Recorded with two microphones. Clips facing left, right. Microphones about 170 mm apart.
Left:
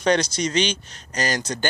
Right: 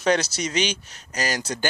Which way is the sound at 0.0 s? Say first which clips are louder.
Left 2 dB; 5° right (ahead or behind).